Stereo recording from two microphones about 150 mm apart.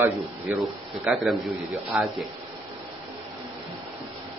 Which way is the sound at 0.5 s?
Centre (ahead or behind).